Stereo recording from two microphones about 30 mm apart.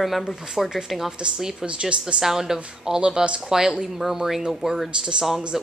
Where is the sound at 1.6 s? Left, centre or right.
Right.